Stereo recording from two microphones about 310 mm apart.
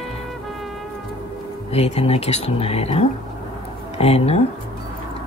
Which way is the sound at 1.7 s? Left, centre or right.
Centre.